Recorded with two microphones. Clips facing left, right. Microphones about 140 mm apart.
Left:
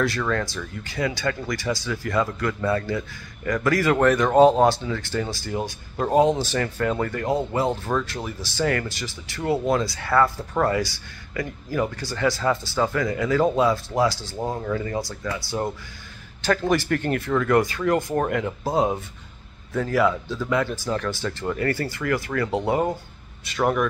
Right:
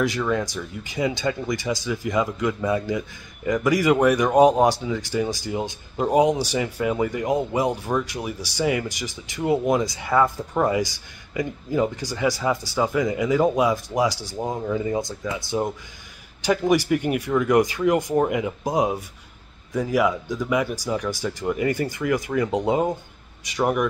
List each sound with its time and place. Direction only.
0.0 s speech: 15° right (ahead or behind)